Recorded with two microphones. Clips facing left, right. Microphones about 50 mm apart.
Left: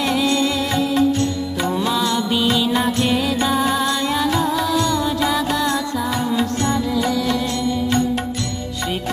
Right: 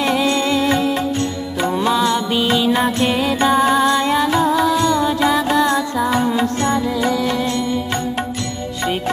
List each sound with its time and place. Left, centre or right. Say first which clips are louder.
0.0 s music: right 1 dB; right